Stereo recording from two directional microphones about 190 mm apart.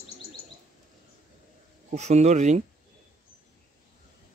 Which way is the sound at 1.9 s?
35° right (ahead or behind).